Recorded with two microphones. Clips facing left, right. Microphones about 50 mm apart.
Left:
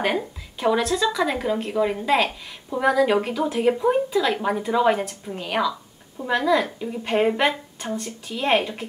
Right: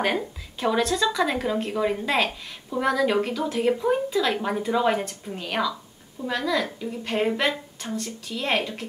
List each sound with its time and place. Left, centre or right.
0.0 s a woman's voice: centre